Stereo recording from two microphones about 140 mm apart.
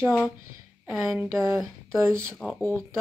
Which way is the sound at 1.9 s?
20° right (ahead or behind).